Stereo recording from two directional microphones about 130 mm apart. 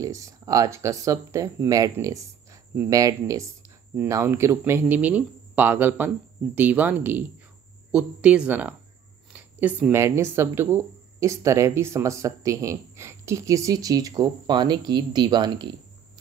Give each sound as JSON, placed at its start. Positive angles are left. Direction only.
{"t": 0.0, "sound": "speech", "side_deg": -25}